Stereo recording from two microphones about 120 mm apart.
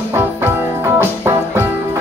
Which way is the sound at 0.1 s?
20° right (ahead or behind).